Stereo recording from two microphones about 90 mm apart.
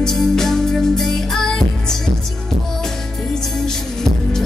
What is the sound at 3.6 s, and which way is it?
Music, 5° left (ahead or behind).